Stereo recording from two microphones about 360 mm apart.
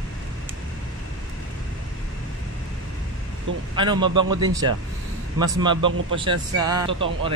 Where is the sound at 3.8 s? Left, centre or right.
Centre.